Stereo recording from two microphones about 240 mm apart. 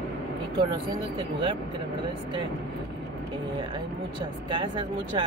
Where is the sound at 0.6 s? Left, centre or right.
Right.